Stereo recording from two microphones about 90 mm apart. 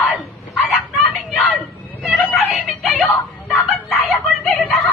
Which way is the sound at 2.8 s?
Centre (ahead or behind).